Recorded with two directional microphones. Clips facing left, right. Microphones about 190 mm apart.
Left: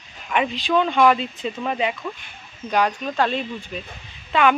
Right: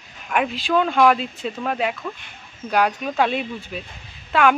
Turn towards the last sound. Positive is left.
turn(degrees=0)  # may be behind; listen again after turning